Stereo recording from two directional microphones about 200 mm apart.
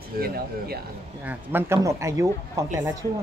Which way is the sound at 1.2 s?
10° right (ahead or behind).